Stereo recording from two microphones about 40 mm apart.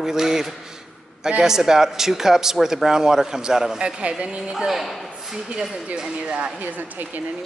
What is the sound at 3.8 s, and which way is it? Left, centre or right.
Speech, right.